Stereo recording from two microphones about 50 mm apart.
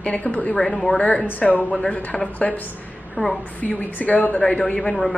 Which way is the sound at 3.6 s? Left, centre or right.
Left.